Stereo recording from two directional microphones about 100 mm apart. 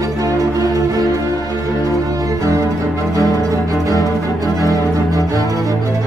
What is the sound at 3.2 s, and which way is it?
Music, 35° left (ahead or behind).